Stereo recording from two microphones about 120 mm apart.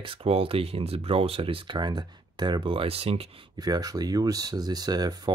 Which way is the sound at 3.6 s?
35° right (ahead or behind).